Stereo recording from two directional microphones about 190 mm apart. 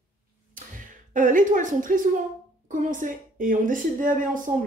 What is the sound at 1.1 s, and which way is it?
A woman's voice, 40° right (ahead or behind).